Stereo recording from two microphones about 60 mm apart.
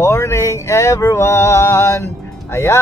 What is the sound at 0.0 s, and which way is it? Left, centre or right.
Speech, left.